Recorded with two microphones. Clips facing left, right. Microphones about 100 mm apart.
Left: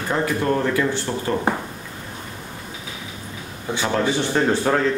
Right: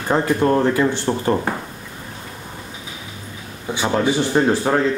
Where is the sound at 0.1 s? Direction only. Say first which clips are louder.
Right 5 dB; 25° right (ahead or behind).